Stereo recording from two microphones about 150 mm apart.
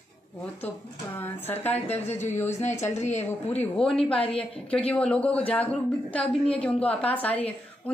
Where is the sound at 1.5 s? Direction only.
45° left (ahead or behind).